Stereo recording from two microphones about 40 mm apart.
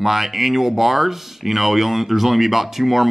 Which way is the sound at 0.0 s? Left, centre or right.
Centre.